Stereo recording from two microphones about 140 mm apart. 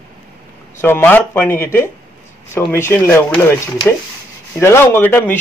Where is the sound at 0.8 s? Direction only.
15° left (ahead or behind).